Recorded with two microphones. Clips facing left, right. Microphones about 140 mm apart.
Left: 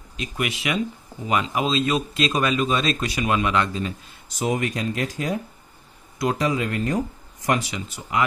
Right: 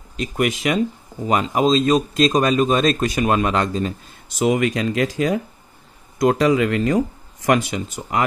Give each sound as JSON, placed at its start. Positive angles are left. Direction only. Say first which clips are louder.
{"t": 0.2, "sound": "speech", "louder": "right 7 dB", "side_deg": -45}
{"t": 4.4, "sound": "speech", "louder": "right 6 dB", "side_deg": -90}
{"t": 6.3, "sound": "speech", "louder": "right 6 dB", "side_deg": -75}
{"t": 7.6, "sound": "speech", "louder": "right 6 dB", "side_deg": -45}